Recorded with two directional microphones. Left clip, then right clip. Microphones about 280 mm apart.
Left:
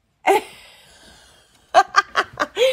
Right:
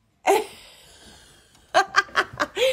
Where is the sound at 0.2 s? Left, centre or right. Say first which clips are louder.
Left 3 dB; left.